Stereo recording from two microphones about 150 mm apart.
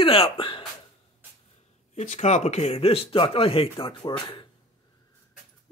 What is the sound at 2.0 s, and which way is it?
Speech, 50° left (ahead or behind).